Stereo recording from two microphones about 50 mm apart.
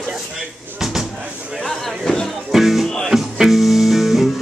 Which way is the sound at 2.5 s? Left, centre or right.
Centre.